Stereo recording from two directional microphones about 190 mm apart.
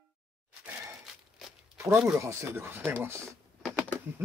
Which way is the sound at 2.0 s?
15° right (ahead or behind).